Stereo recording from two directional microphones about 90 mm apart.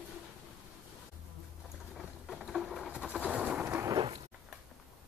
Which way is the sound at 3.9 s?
50° right (ahead or behind).